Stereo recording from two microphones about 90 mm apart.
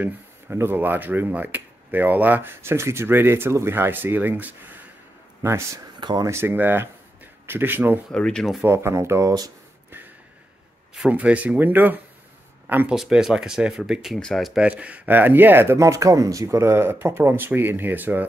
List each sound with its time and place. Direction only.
0.0 s speech: 25° right (ahead or behind)
5.9 s speech: 55° right (ahead or behind)
6.2 s speech: 25° right (ahead or behind)
8.1 s speech: 10° left (ahead or behind)
8.6 s speech: 30° right (ahead or behind)
9.8 s snort: 25° right (ahead or behind)
11.1 s speech: 15° right (ahead or behind)
12.9 s speech: 5° right (ahead or behind)
14.6 s speech: 15° right (ahead or behind)